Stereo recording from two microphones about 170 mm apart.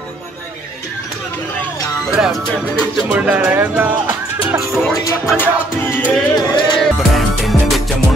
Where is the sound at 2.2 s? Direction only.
Centre (ahead or behind).